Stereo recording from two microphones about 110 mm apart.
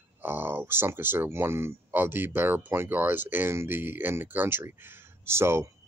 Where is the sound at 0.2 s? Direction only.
15° right (ahead or behind).